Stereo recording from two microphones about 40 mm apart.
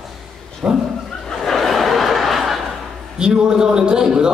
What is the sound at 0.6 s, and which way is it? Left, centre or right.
Speech, right.